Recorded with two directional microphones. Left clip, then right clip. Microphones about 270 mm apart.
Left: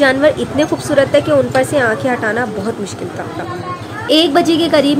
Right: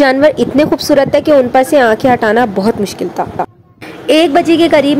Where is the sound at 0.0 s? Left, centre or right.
Right.